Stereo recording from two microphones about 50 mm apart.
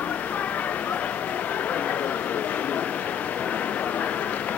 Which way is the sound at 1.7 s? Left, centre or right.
Left.